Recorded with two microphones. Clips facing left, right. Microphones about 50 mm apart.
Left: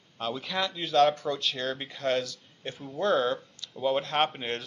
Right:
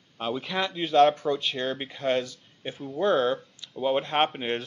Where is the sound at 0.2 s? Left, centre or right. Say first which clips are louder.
Right 2 dB; centre.